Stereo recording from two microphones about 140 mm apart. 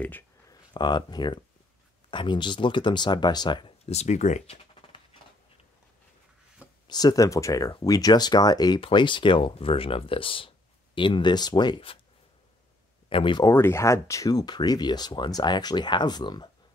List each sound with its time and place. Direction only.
0.5 s speech: 30° left (ahead or behind)
3.8 s speech: 50° left (ahead or behind)
6.9 s speech: 30° left (ahead or behind)
13.1 s speech: 35° left (ahead or behind)
13.5 s speech: 20° left (ahead or behind)